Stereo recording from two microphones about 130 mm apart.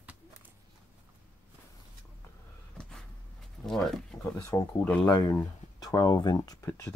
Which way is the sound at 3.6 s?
5° left (ahead or behind).